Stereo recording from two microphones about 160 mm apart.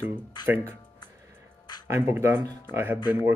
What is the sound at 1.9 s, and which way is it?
Speech, 15° right (ahead or behind).